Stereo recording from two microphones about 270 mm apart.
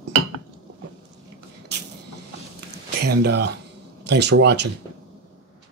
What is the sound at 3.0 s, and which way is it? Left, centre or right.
Speech, right.